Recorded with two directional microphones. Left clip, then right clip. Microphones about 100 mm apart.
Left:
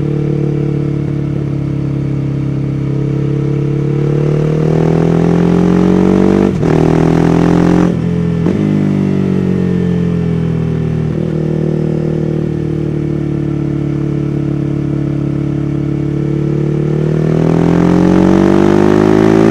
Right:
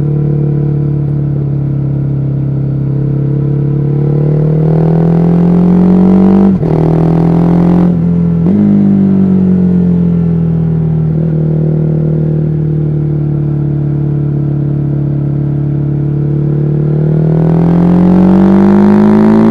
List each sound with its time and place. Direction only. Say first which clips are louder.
4.9 s vehicle: even; 30° left (ahead or behind)
18.0 s vehicle: even; 35° left (ahead or behind)